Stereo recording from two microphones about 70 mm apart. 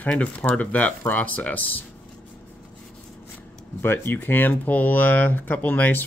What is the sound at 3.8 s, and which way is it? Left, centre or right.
Speech, left.